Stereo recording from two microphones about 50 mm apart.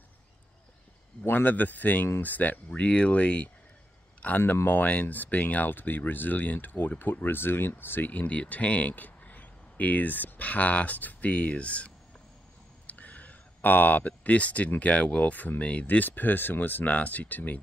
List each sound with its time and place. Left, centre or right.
1.2 s speech: left
8.1 s speech: left
16.1 s speech: left